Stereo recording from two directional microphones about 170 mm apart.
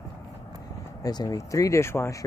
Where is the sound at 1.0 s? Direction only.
25° left (ahead or behind).